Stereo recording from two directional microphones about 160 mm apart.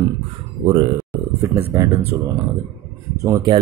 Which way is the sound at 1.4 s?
20° right (ahead or behind).